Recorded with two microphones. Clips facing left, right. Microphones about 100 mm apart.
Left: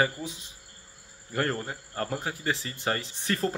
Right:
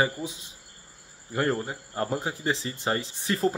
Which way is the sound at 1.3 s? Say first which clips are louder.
Right 3 dB; 15° right (ahead or behind).